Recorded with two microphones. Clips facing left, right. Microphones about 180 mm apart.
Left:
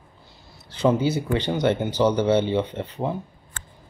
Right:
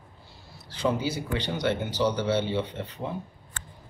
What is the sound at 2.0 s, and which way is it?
Speech, 50° left (ahead or behind).